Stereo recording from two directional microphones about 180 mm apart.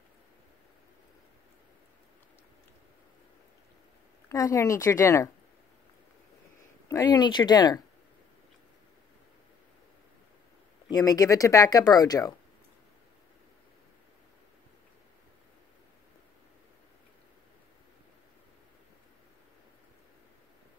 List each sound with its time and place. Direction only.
4.3 s speech: 15° left (ahead or behind)
6.9 s speech: 20° left (ahead or behind)
10.9 s speech: 20° left (ahead or behind)